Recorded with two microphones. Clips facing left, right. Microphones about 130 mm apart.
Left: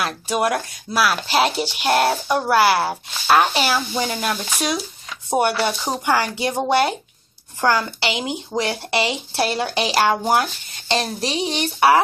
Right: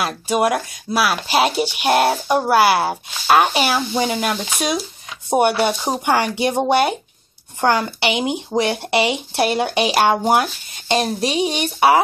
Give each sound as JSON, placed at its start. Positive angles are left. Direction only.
{"t": 0.0, "sound": "speech", "side_deg": -10}